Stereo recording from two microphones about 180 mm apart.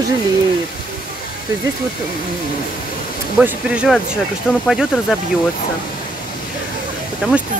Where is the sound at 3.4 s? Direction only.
5° right (ahead or behind).